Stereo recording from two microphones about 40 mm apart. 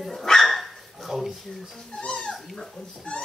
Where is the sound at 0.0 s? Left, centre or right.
Centre.